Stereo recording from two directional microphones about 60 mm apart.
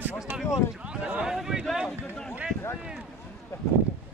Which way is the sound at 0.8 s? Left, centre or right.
Centre.